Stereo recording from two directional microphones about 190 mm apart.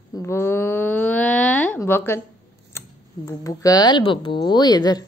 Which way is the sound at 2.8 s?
15° left (ahead or behind).